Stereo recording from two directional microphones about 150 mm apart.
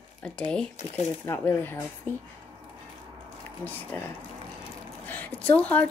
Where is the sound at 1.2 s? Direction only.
15° left (ahead or behind).